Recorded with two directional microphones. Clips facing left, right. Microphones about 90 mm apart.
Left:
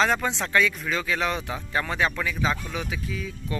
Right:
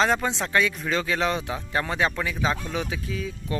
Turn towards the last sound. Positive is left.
turn(degrees=-35)  # may be behind; listen again after turning